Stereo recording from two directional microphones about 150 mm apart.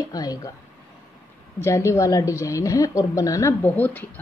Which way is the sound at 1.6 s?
20° left (ahead or behind).